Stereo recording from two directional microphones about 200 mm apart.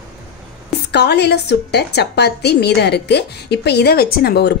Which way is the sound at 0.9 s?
55° left (ahead or behind).